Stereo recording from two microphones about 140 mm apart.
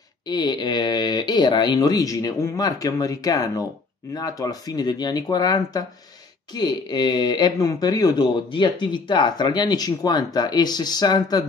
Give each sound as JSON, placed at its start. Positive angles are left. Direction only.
{"t": 0.3, "sound": "speech", "side_deg": 30}